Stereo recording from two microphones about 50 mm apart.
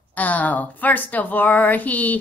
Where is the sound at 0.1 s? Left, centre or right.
Left.